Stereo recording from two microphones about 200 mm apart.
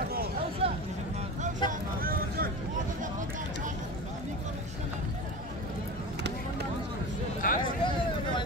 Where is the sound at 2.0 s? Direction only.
45° right (ahead or behind).